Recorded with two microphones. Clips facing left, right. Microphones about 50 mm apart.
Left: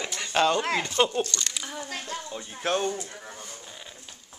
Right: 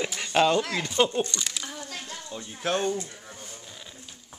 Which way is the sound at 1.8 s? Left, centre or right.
Left.